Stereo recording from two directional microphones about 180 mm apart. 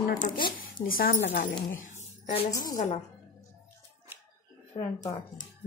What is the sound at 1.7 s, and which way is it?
Speech, 90° left.